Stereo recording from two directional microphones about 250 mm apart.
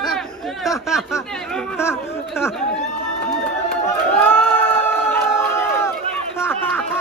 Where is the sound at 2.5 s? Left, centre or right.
Centre.